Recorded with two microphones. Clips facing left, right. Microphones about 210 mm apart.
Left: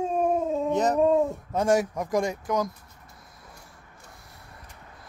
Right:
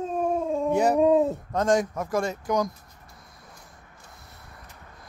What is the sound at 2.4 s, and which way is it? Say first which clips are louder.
Speech: right 2 dB; 5° left (ahead or behind).